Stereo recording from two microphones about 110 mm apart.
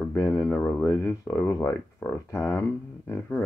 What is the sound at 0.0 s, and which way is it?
Speech, 25° left (ahead or behind).